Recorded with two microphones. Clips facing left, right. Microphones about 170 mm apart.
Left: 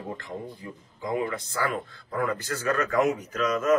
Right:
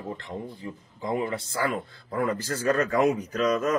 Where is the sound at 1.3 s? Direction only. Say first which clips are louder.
Right 1 dB; 30° right (ahead or behind).